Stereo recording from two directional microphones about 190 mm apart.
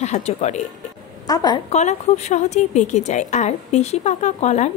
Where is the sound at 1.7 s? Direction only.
35° left (ahead or behind).